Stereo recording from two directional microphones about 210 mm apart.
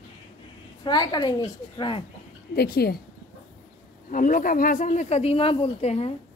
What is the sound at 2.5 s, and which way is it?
Speech, 50° left (ahead or behind).